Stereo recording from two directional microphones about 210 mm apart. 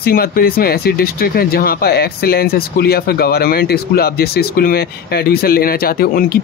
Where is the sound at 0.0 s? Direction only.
45° left (ahead or behind).